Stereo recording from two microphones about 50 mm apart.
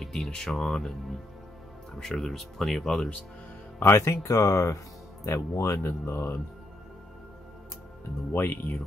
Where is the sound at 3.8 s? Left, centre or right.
Left.